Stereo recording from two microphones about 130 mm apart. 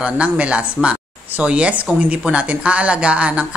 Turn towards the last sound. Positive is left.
turn(degrees=-10)  # may be behind; listen again after turning